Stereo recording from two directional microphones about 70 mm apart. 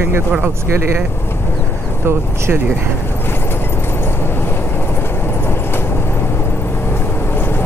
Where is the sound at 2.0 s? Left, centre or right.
Right.